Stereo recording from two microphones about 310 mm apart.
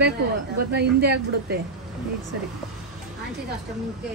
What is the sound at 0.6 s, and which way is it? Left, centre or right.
A woman's voice, right.